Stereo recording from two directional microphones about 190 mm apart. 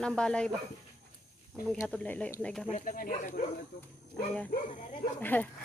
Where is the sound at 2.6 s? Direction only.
40° left (ahead or behind).